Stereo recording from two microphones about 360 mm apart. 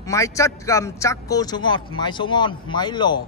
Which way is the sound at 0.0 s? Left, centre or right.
Centre.